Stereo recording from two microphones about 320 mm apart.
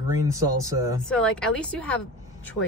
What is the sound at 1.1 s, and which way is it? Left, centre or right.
Speech, centre.